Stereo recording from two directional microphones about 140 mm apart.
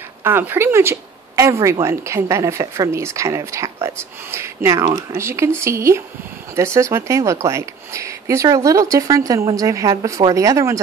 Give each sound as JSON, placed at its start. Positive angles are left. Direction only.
{"t": 0.2, "sound": "speech", "side_deg": -15}